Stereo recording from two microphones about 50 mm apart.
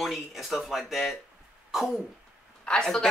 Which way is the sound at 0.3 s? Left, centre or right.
Centre.